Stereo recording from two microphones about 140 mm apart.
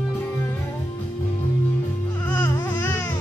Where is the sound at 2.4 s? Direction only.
15° left (ahead or behind).